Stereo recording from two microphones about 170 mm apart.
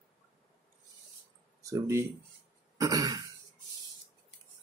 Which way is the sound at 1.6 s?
15° right (ahead or behind).